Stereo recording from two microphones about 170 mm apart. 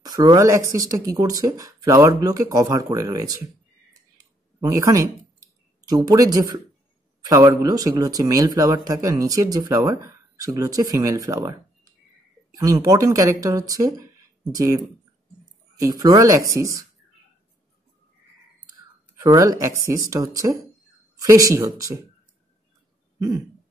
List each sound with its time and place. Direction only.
0.0 s speech: 20° right (ahead or behind)
4.6 s speech: 20° right (ahead or behind)
15.8 s speech: 20° right (ahead or behind)
19.2 s speech: 20° right (ahead or behind)